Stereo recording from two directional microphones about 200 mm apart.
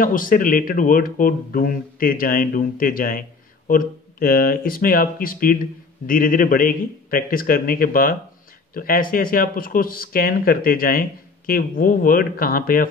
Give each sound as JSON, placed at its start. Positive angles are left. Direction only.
{"t": 0.0, "sound": "speech", "side_deg": 45}